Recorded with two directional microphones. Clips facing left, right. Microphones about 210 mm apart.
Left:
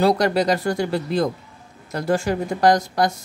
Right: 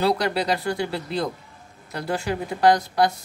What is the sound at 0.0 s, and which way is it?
A woman's voice, 45° left (ahead or behind).